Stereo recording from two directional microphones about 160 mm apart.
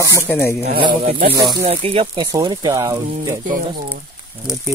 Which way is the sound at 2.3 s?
25° right (ahead or behind).